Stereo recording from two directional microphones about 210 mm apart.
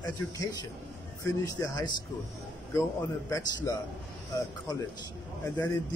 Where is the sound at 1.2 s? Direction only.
15° left (ahead or behind).